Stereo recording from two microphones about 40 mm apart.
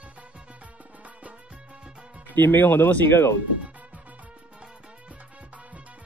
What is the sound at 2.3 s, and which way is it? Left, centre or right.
Speech, left.